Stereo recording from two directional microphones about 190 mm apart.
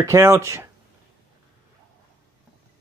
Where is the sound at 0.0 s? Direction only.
15° right (ahead or behind).